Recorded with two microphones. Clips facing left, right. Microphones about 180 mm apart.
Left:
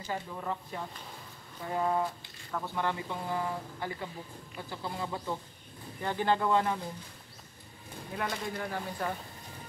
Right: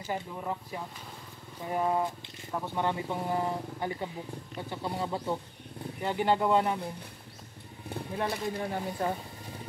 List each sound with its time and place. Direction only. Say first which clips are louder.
0.0 s speech: right 2 dB; 15° right (ahead or behind)
8.2 s speech: right 3 dB; 25° right (ahead or behind)